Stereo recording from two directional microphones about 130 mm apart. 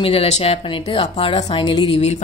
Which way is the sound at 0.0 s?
50° left (ahead or behind).